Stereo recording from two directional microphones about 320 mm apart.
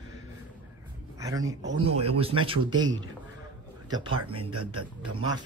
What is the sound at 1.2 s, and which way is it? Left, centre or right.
A man's voice, centre.